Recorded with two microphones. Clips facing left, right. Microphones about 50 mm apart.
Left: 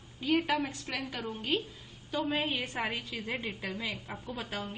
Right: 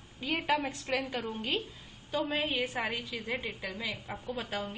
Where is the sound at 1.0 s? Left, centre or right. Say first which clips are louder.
Left 1 dB; centre.